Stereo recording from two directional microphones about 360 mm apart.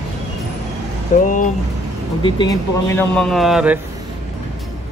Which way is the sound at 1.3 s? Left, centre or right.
Left.